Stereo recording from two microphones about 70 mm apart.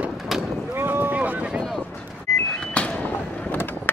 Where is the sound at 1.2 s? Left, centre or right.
Centre.